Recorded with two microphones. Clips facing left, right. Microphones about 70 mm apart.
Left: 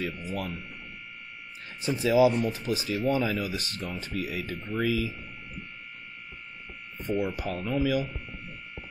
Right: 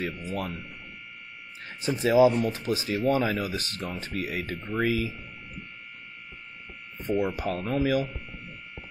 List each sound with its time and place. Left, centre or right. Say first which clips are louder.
0.3 s speech: right 1 dB; right
1.9 s speech: right 2 dB; right
7.1 s speech: right 2 dB; right
7.4 s speech: right 1 dB; right